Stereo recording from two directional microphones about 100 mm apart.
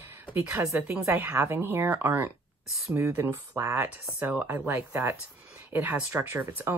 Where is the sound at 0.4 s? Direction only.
25° right (ahead or behind).